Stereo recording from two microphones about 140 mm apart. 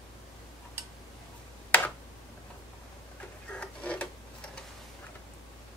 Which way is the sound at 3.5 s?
10° left (ahead or behind).